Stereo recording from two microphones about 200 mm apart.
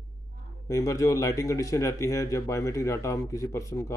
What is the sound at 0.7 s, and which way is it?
A man's voice, 15° left (ahead or behind).